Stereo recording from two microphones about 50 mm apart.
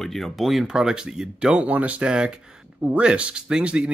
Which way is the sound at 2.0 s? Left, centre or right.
Centre.